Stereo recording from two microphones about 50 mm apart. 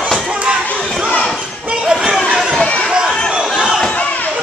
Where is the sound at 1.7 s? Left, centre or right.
Centre.